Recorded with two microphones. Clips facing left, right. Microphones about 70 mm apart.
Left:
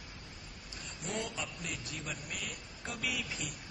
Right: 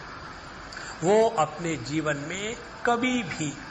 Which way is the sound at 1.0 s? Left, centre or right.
Right.